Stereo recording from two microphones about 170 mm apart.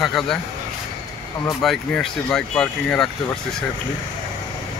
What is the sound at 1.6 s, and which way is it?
Speech, centre (ahead or behind).